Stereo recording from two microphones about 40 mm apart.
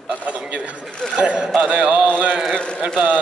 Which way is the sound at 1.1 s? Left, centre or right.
Right.